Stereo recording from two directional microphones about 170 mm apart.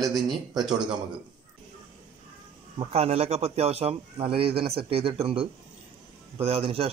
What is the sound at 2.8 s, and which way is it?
A man's voice, 35° right (ahead or behind).